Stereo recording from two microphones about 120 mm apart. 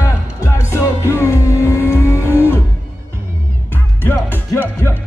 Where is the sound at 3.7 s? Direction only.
15° left (ahead or behind).